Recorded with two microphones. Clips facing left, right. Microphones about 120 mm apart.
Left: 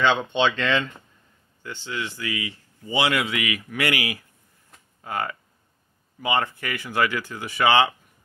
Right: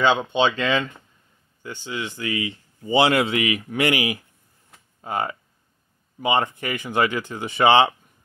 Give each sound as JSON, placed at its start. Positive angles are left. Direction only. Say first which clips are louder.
{"t": 0.0, "sound": "speech", "louder": "right 2 dB", "side_deg": -10}